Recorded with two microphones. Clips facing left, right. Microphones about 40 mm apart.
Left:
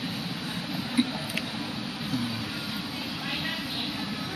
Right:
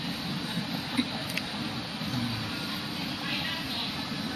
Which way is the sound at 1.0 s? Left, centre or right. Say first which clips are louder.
Left 5 dB; centre.